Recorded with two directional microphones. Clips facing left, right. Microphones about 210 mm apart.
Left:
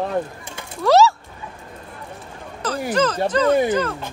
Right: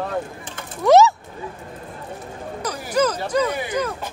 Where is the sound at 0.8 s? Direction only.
20° right (ahead or behind).